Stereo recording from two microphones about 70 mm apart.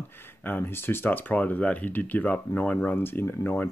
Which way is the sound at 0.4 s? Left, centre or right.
Left.